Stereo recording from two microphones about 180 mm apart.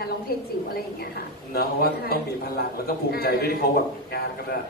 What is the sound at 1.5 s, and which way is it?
A man's voice, 55° left (ahead or behind).